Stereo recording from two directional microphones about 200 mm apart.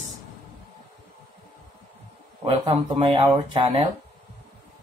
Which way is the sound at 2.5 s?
30° right (ahead or behind).